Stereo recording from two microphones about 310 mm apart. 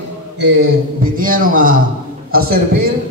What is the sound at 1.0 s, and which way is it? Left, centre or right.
A man's voice, right.